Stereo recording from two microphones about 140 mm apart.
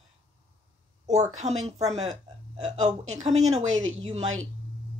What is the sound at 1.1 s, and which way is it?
A woman's voice, 50° right (ahead or behind).